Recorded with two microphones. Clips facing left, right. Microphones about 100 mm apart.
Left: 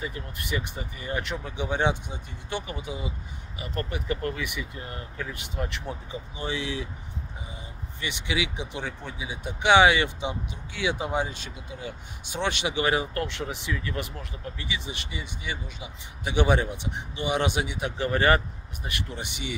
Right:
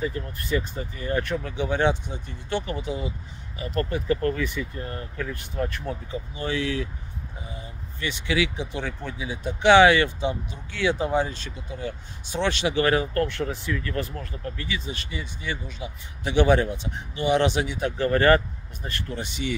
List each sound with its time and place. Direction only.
0.0 s speech: 15° left (ahead or behind)
4.4 s speech: 15° left (ahead or behind)
8.0 s speech: 15° left (ahead or behind)